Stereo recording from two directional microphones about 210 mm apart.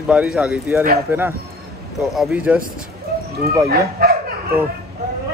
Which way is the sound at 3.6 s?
45° right (ahead or behind).